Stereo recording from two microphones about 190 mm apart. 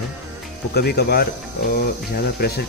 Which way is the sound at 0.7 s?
55° left (ahead or behind).